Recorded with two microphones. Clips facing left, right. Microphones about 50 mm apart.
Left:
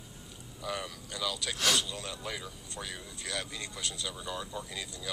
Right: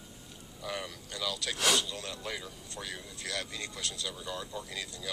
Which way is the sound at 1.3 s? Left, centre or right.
Left.